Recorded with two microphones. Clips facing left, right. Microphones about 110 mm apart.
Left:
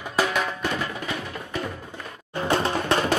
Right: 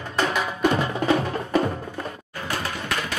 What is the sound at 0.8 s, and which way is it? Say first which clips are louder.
Music: right 6 dB; 30° right (ahead or behind).